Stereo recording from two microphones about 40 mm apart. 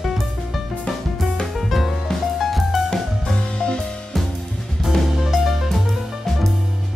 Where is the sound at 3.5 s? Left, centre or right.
Left.